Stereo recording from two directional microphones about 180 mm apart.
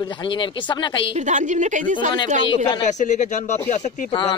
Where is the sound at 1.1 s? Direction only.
45° right (ahead or behind).